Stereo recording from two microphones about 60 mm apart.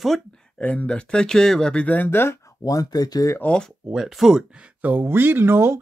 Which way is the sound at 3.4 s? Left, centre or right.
Centre.